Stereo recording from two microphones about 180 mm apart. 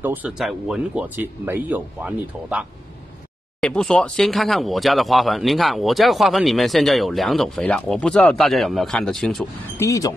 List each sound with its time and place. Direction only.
0.0 s speech: 10° right (ahead or behind)
3.6 s speech: 5° left (ahead or behind)
9.8 s speech: 20° left (ahead or behind)